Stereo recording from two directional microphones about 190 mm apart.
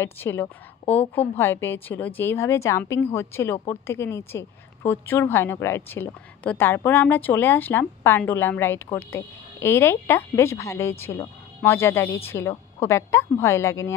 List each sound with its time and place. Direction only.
0.0 s a woman's voice: 10° left (ahead or behind)